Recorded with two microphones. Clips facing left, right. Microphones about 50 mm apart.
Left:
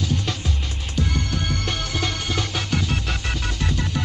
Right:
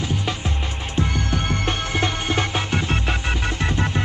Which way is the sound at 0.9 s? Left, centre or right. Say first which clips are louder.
Right 2 dB; right.